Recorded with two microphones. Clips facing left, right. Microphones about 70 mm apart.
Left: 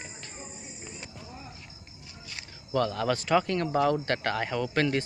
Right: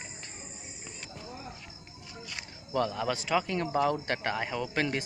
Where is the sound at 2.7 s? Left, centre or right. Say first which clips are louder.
Left 3 dB; centre.